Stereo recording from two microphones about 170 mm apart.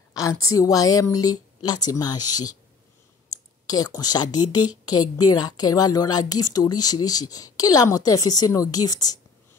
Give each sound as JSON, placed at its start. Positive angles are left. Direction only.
{"t": 0.1, "sound": "a woman's voice", "side_deg": 20}
{"t": 3.6, "sound": "a woman's voice", "side_deg": 20}